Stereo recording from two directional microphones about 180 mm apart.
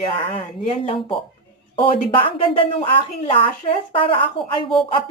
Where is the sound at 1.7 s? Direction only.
30° left (ahead or behind).